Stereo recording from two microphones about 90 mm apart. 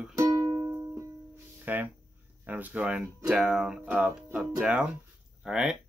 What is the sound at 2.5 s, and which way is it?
Speech, 20° right (ahead or behind).